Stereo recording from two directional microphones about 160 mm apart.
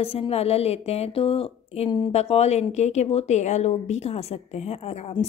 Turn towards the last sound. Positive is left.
turn(degrees=40)  # may be behind; listen again after turning